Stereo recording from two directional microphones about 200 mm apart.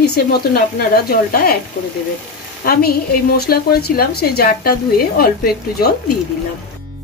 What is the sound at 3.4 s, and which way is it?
Speech, 50° left (ahead or behind).